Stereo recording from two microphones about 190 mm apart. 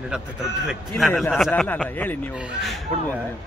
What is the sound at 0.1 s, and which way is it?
A man's voice, 5° right (ahead or behind).